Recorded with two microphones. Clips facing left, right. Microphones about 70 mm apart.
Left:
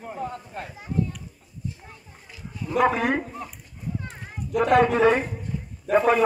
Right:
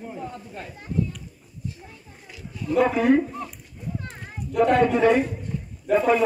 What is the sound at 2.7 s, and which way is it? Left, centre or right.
Speech, left.